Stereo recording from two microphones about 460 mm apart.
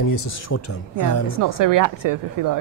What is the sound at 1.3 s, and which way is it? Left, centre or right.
A woman's voice, right.